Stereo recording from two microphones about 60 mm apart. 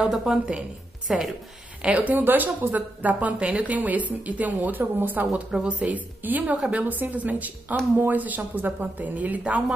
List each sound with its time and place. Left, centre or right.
0.1 s a woman's voice: centre
2.0 s speech: right
5.3 s speech: centre